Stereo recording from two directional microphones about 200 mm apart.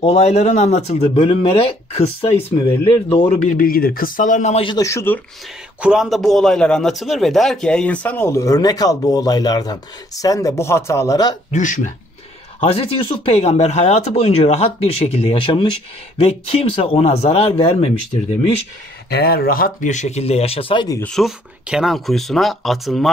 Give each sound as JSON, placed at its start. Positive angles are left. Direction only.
{"t": 0.0, "sound": "speech", "side_deg": 35}
{"t": 3.4, "sound": "speech", "side_deg": 45}
{"t": 5.8, "sound": "a man's voice", "side_deg": -5}
{"t": 11.5, "sound": "speech", "side_deg": 40}
{"t": 19.0, "sound": "speech", "side_deg": 50}
{"t": 21.0, "sound": "speech", "side_deg": 0}